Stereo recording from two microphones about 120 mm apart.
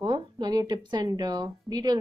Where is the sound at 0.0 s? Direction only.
40° right (ahead or behind).